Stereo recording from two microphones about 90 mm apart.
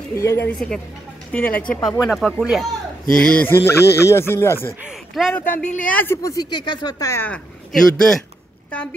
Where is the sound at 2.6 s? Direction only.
10° left (ahead or behind).